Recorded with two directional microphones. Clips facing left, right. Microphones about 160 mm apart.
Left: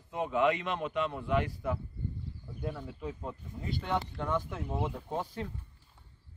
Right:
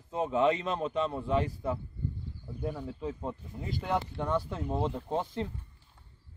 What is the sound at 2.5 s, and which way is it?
Speech, 15° right (ahead or behind).